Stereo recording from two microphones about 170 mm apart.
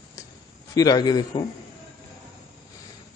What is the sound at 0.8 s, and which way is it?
Speech, 25° left (ahead or behind).